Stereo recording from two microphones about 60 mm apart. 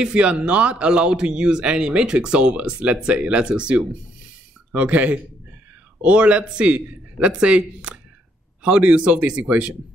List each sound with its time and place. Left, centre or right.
0.0 s a man's voice: centre